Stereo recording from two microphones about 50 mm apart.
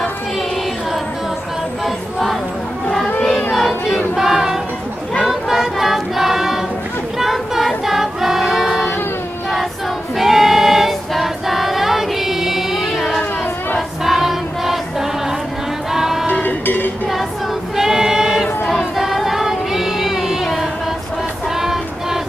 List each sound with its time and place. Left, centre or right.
3.5 s chatter: centre
4.1 s a sound: centre
5.2 s choir: centre
10.1 s female singing: centre
13.7 s choir: centre
16.3 s a sound: left
17.7 s choir: centre
18.7 s child singing: centre